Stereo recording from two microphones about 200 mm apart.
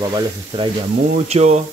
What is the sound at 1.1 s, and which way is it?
Speech, 35° right (ahead or behind).